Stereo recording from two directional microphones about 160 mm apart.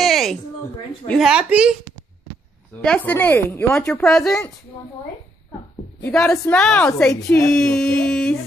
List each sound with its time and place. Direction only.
0.0 s a sound: centre (ahead or behind)
2.8 s speech: 10° left (ahead or behind)
6.0 s speech: 10° left (ahead or behind)
6.3 s a woman's voice: 20° left (ahead or behind)
6.6 s speech: 5° left (ahead or behind)
7.2 s a sound: 5° left (ahead or behind)